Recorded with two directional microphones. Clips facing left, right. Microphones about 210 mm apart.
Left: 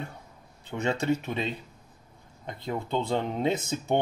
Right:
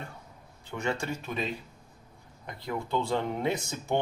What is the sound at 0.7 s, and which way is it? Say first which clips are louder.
Speech: left 5 dB; 20° left (ahead or behind).